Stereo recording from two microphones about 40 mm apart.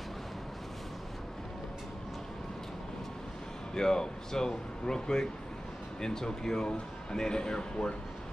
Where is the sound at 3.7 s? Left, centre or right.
Centre.